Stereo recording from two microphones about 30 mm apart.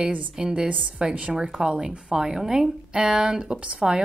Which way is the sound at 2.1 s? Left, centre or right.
Centre.